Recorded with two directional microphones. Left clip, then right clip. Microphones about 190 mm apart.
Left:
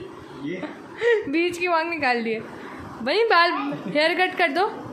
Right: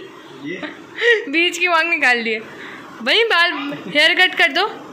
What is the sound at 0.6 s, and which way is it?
A woman's voice, 10° left (ahead or behind).